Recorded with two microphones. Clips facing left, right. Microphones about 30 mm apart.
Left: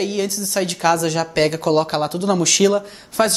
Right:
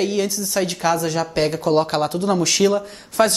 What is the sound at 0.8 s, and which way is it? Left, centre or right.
Speech, left.